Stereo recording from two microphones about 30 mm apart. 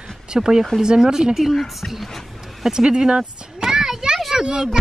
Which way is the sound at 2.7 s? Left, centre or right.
Right.